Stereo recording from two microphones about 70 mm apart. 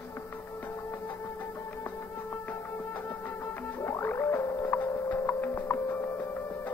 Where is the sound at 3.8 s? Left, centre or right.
Left.